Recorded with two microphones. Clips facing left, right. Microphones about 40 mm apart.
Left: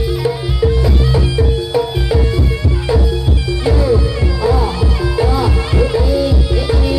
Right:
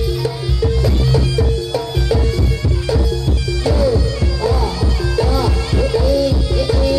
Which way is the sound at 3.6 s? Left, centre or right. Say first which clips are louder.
Left 2 dB; centre.